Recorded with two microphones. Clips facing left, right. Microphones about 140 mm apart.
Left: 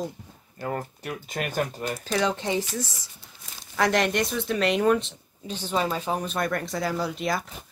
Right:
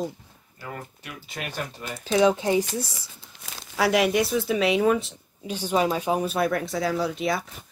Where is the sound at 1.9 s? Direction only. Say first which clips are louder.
Right 7 dB; 5° right (ahead or behind).